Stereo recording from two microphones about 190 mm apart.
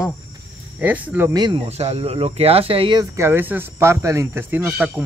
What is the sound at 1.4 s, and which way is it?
Speech, 30° right (ahead or behind).